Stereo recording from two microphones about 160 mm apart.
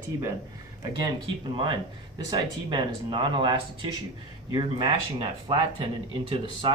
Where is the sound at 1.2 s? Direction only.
30° right (ahead or behind).